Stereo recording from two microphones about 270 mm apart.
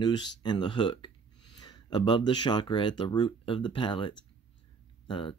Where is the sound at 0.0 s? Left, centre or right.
Centre.